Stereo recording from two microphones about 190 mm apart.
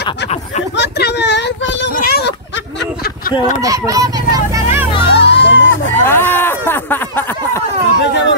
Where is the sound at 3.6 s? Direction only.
20° right (ahead or behind).